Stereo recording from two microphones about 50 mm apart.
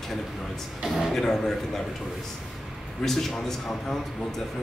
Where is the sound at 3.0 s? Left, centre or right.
Centre.